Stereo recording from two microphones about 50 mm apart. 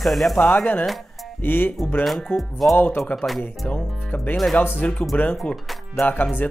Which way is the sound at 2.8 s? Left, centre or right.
Left.